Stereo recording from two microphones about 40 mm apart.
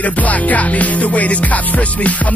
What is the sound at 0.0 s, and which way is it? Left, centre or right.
Music, left.